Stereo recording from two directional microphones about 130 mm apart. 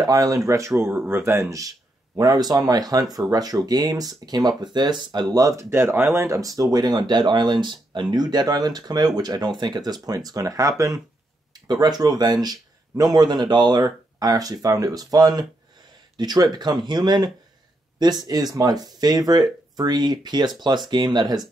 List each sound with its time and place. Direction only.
0.0 s speech: 30° right (ahead or behind)